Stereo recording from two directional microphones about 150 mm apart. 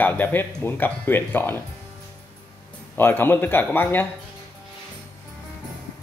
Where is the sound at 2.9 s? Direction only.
15° left (ahead or behind).